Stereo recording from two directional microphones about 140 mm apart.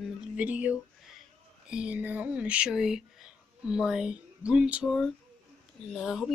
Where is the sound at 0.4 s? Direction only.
10° right (ahead or behind).